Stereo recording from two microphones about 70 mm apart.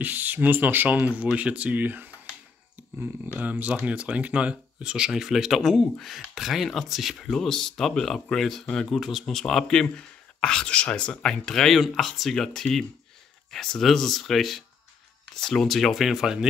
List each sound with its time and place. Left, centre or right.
0.0 s speech: right
3.3 s speech: right